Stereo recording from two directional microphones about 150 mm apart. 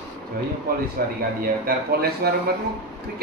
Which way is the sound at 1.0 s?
75° right (ahead or behind).